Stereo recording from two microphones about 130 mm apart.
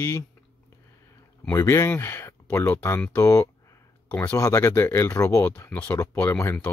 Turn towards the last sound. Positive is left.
turn(degrees=15)  # may be behind; listen again after turning